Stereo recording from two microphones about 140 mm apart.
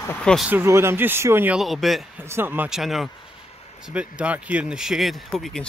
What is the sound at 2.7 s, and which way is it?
Speech, centre (ahead or behind).